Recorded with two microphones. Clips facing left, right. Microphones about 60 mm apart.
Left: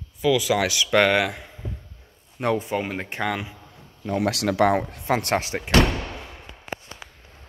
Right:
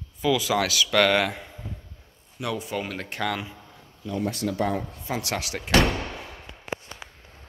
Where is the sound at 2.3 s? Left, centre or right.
Left.